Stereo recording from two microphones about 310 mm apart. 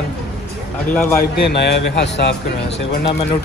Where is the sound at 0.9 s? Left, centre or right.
Centre.